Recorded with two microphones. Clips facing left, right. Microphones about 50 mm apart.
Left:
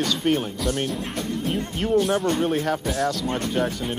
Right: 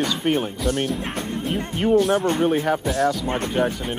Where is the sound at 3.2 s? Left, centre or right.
Right.